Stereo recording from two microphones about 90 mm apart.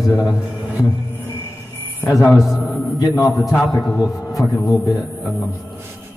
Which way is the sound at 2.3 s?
Centre (ahead or behind).